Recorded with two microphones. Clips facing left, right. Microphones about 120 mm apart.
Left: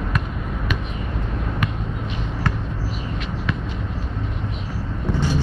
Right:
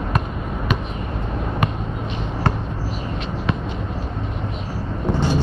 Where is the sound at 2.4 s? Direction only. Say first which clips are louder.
Right 4 dB; 30° right (ahead or behind).